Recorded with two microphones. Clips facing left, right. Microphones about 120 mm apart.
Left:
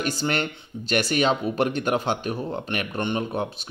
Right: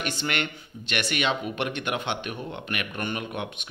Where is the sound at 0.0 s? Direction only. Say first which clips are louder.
Left 4 dB; 40° left (ahead or behind).